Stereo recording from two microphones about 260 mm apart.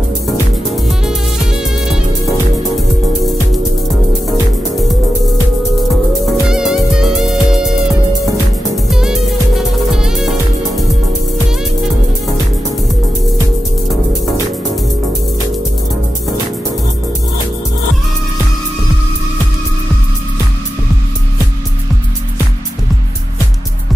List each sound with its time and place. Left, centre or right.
0.7 s music: centre
6.3 s music: centre
8.9 s music: centre